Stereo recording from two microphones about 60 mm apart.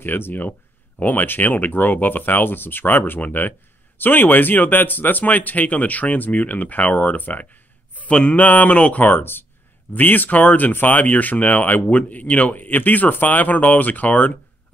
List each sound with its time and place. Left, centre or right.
0.0 s speech: left
9.1 s speech: left